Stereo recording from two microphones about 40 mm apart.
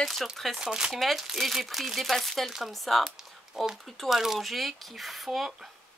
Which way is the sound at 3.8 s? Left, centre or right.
Centre.